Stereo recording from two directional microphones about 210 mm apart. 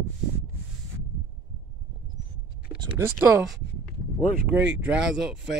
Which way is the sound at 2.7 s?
20° right (ahead or behind).